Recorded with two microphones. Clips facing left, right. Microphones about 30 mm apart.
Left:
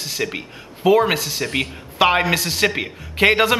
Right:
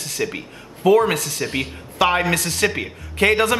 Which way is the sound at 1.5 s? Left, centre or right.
Centre.